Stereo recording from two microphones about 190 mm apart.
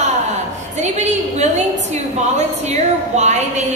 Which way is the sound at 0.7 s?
35° right (ahead or behind).